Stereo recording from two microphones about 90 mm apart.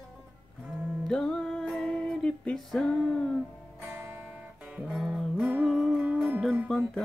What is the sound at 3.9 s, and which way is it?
Guitar, 20° right (ahead or behind).